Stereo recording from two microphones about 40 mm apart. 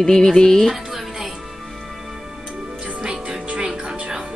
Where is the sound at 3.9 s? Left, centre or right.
Right.